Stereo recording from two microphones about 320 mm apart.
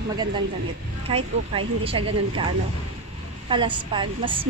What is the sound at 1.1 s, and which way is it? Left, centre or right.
A woman's voice, centre.